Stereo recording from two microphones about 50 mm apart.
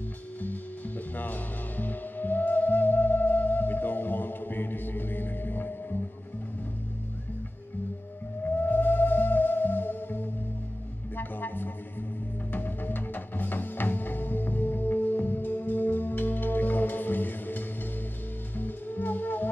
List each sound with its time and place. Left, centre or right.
0.4 s music: left
8.5 s music: left